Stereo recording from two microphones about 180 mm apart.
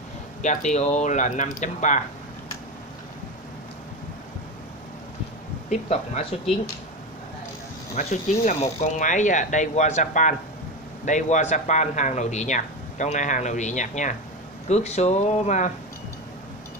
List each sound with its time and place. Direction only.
0.4 s speech: 40° left (ahead or behind)
5.7 s speech: 40° left (ahead or behind)
7.9 s speech: 45° left (ahead or behind)